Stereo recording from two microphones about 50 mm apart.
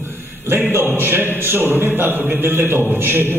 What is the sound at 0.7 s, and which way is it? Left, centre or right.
A man's voice, right.